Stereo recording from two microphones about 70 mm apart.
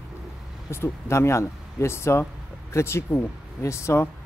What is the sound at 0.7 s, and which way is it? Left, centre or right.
Speech, left.